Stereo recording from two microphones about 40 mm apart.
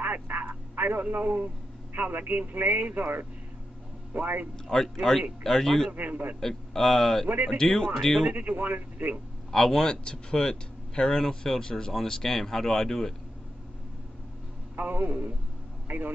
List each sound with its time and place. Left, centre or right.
0.0 s a sound: right
1.1 s speech: right
4.7 s speech: centre
5.4 s speech: centre
5.9 s speech: right
6.4 s speech: centre
8.4 s speech: right
9.5 s speech: centre
9.8 s speech: left
14.8 s speech: right
15.9 s speech: right